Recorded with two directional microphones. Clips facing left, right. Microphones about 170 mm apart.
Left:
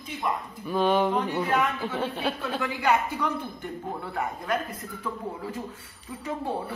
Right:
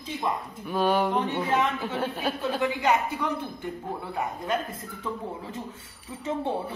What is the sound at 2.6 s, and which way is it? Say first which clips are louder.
Speech: even; 20° right (ahead or behind).